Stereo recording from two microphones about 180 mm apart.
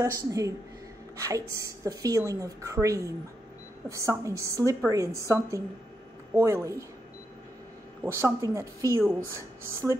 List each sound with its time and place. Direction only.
0.0 s a woman's voice: 20° right (ahead or behind)
8.0 s a woman's voice: 15° right (ahead or behind)